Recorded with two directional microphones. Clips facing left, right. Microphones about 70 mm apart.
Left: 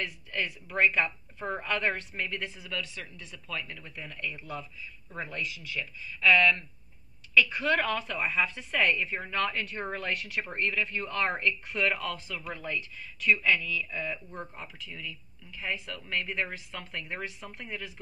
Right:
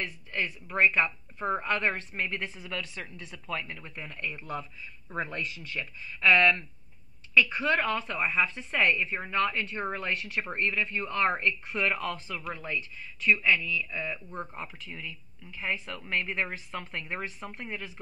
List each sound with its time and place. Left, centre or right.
0.0 s a woman's voice: right